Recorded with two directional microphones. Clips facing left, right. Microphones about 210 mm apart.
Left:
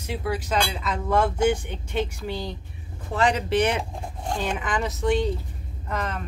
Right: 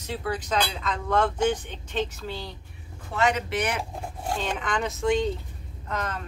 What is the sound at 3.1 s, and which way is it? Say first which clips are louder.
Speech: left 3 dB; 30° left (ahead or behind).